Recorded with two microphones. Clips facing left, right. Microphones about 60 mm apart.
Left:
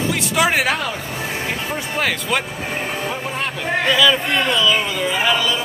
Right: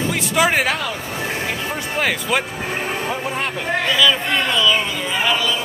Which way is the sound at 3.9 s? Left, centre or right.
Centre.